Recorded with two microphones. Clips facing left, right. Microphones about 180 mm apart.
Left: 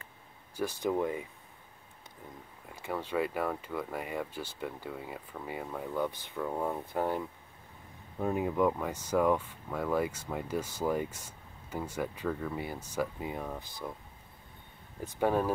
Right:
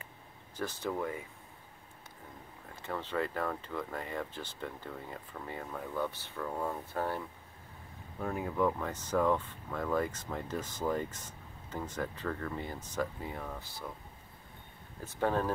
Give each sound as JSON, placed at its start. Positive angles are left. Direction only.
{"t": 0.6, "sound": "speech", "side_deg": 10}
{"t": 2.7, "sound": "speech", "side_deg": 10}
{"t": 15.0, "sound": "speech", "side_deg": 10}